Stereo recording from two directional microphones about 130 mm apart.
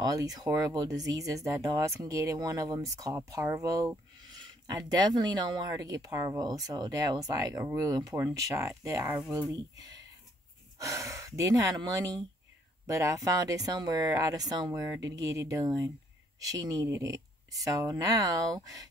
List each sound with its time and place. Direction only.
0.0 s speech: 30° right (ahead or behind)